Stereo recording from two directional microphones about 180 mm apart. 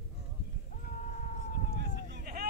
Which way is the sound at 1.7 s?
60° right (ahead or behind).